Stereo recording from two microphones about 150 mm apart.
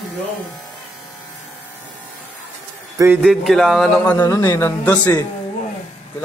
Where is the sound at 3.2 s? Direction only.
Centre (ahead or behind).